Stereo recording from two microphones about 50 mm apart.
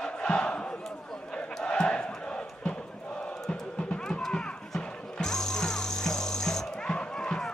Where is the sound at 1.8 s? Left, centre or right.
Centre.